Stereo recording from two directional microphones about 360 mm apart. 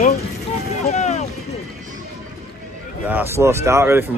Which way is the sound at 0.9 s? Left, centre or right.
Centre.